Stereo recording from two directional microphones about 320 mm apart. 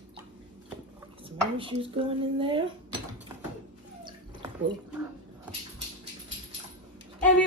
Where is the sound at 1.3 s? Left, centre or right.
Centre.